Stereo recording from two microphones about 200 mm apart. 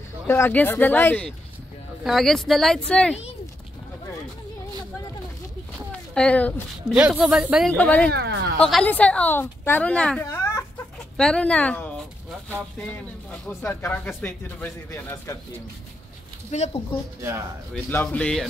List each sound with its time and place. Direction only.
0.3 s a woman's voice: 10° left (ahead or behind)
5.9 s speech: 5° left (ahead or behind)
7.0 s speech: 5° right (ahead or behind)
8.1 s speech: 55° right (ahead or behind)
8.5 s a woman's voice: 5° left (ahead or behind)
11.1 s a sound: 5° left (ahead or behind)
13.5 s a woman's voice: 10° left (ahead or behind)
16.4 s speech: 35° left (ahead or behind)
17.2 s speech: 15° right (ahead or behind)
17.8 s a woman's voice: 10° left (ahead or behind)